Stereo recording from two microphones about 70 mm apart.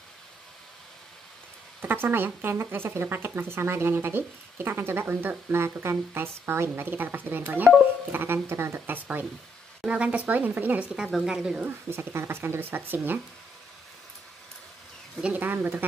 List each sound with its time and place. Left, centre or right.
1.8 s speech: right; by 11.1 s centre
11.1 s a woman's voice: centre
11.9 s speech: right
15.2 s speech: right